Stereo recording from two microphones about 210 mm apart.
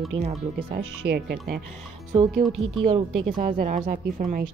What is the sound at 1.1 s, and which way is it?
Speech, 50° right (ahead or behind).